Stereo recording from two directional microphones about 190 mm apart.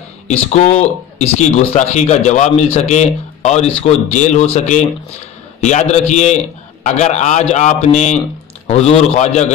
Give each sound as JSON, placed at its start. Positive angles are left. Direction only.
{"t": 0.5, "sound": "speech", "side_deg": 35}